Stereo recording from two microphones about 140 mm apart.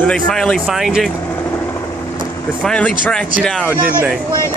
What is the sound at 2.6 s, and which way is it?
Speech, 10° left (ahead or behind).